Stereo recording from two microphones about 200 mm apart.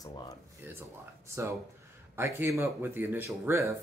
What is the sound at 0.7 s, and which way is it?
Speech, 15° right (ahead or behind).